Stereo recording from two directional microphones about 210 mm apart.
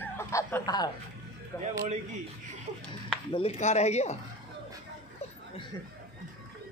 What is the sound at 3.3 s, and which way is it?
Speech, 30° left (ahead or behind).